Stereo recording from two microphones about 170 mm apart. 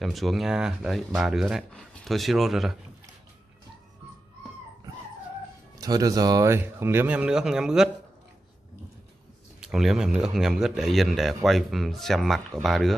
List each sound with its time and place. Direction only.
0.0 s a man's voice: centre (ahead or behind)
5.8 s speech: 20° right (ahead or behind); by 7.9 s 5° right (ahead or behind)
9.6 s a man's voice: 5° right (ahead or behind)